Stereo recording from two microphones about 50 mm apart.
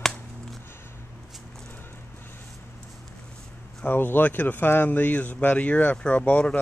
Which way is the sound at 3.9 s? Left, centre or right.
Left.